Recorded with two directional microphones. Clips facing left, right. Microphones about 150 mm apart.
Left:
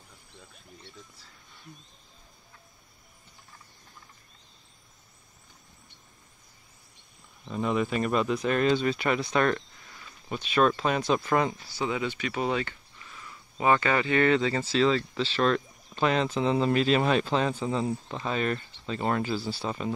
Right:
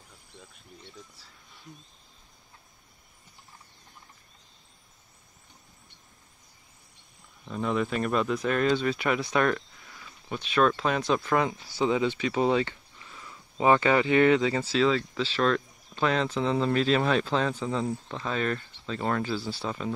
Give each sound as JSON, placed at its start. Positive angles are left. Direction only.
{"t": 7.4, "sound": "speech", "side_deg": 10}
{"t": 11.8, "sound": "speech", "side_deg": -25}